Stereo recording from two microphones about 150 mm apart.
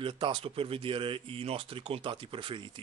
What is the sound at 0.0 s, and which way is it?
Speech, 35° right (ahead or behind).